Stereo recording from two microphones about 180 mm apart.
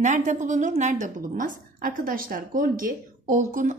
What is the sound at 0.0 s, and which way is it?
A woman's voice, 40° right (ahead or behind).